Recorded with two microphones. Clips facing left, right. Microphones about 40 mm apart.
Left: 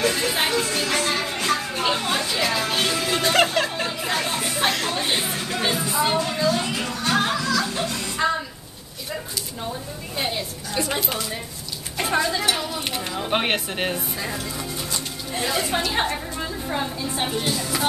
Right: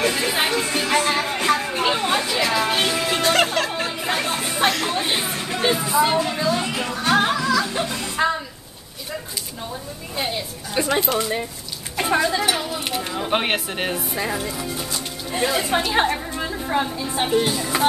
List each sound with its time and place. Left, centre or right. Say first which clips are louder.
0.0 s music: right 1 dB; centre
3.9 s chatter: right 1 dB; centre
4.7 s a sound: right 1 dB; centre
10.1 s speech: right 1 dB; centre
10.8 s speech: right 5 dB; centre
12.0 s speech: right 3 dB; centre
14.1 s speech: right 4 dB; centre
14.5 s speech: right 2 dB; centre